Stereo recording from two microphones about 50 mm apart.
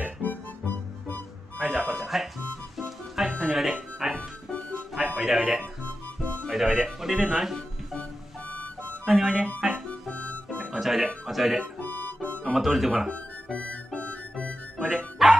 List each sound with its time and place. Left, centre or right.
0.2 s music: left
1.6 s speech: centre
2.8 s music: centre
4.2 s music: centre
4.9 s music: centre
6.5 s speech: centre
9.6 s music: centre
10.1 s harmonica: left
10.6 s music: centre
11.2 s speech: centre
11.8 s music: left
12.5 s speech: centre
13.1 s music: left
14.8 s music: centre